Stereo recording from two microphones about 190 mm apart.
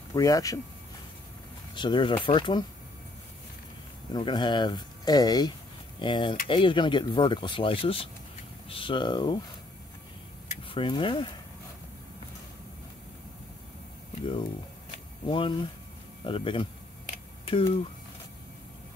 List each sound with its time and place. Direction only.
0.1 s speech: 20° left (ahead or behind)
1.8 s speech: 25° left (ahead or behind)
4.1 s speech: 25° left (ahead or behind)
10.7 s speech: 25° left (ahead or behind)
15.2 s speech: 25° left (ahead or behind)
17.1 s a sound: 30° left (ahead or behind)